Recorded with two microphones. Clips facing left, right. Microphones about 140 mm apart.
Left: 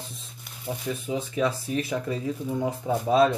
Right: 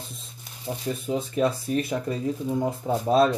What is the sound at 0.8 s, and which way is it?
Speech, 45° right (ahead or behind).